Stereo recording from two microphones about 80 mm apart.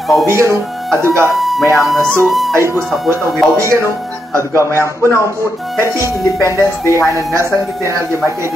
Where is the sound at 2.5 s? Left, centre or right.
Right.